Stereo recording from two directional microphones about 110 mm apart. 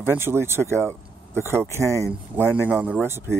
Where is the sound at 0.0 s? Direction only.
20° right (ahead or behind).